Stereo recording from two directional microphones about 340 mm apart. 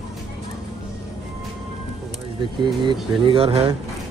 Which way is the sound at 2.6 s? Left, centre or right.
Centre.